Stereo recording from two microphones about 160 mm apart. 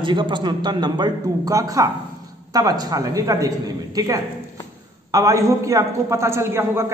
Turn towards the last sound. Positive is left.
turn(degrees=-15)  # may be behind; listen again after turning